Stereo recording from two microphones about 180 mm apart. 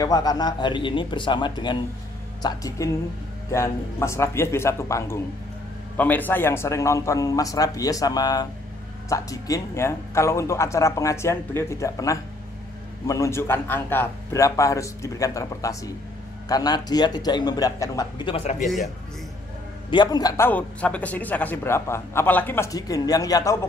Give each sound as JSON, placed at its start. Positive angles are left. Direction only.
{"t": 0.0, "sound": "a man's voice", "side_deg": 20}
{"t": 19.9, "sound": "a man's voice", "side_deg": 25}